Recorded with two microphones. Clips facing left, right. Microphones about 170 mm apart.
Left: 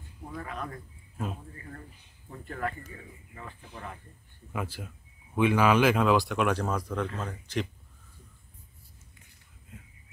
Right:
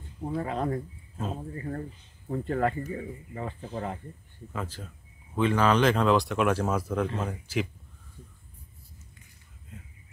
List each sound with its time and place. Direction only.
0.2 s speech: 30° right (ahead or behind)
4.5 s speech: 10° left (ahead or behind); by 7.6 s 5° right (ahead or behind)